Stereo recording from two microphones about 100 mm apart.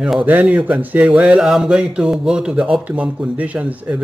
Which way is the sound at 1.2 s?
5° right (ahead or behind).